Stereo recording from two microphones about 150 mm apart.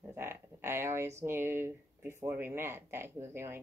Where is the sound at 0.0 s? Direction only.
15° right (ahead or behind).